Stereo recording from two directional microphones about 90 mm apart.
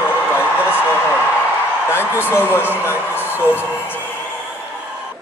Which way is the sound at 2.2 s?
25° left (ahead or behind).